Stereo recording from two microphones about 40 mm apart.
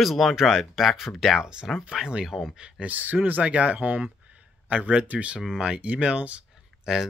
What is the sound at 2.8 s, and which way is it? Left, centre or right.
Speech, right.